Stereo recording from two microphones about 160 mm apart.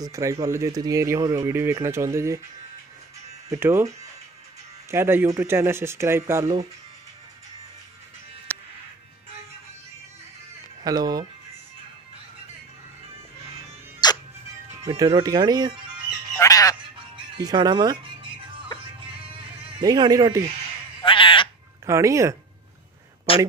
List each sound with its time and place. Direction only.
0.0 s speech: 20° right (ahead or behind)
3.4 s speech: 15° right (ahead or behind)
4.9 s speech: 15° right (ahead or behind)
8.5 s music: 10° left (ahead or behind)
10.8 s speech: 25° right (ahead or behind)
14.0 s music: 25° left (ahead or behind)
14.9 s speech: 30° right (ahead or behind)
16.3 s goose: 20° left (ahead or behind)
17.4 s speech: 25° right (ahead or behind)
19.8 s speech: 25° right (ahead or behind)
21.0 s bleat: 35° left (ahead or behind)
21.8 s speech: 20° right (ahead or behind)